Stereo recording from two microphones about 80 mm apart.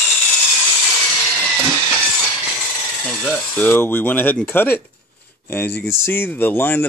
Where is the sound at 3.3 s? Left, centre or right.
Left.